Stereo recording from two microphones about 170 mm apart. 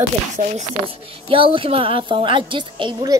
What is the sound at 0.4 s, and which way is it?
Speech, 40° right (ahead or behind).